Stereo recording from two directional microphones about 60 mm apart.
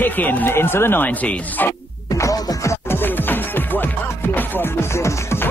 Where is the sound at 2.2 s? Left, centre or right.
Left.